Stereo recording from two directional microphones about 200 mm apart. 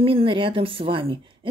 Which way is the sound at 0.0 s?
25° right (ahead or behind).